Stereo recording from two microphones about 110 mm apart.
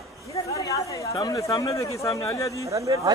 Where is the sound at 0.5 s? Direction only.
30° left (ahead or behind).